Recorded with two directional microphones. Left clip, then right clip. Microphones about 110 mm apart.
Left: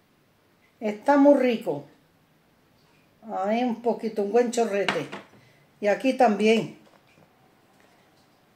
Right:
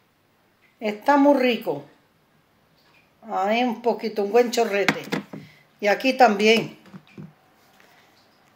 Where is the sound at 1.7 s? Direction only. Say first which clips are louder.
Right 2 dB; 25° right (ahead or behind).